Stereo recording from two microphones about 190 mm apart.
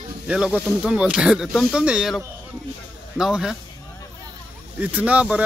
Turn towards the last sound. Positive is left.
turn(degrees=-5)  # may be behind; listen again after turning